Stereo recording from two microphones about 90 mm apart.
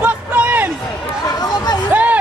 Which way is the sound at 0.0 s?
20° right (ahead or behind).